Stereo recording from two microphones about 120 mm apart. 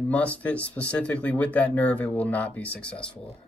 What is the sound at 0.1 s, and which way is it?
Speech, 10° left (ahead or behind).